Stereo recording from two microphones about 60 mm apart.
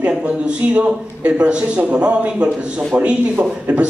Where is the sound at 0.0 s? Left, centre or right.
Centre.